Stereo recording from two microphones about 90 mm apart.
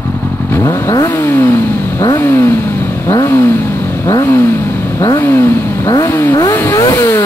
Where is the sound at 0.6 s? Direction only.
45° left (ahead or behind).